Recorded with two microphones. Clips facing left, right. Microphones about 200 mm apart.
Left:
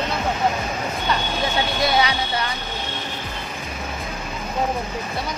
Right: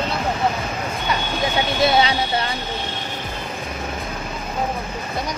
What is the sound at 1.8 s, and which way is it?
Speech, 25° right (ahead or behind).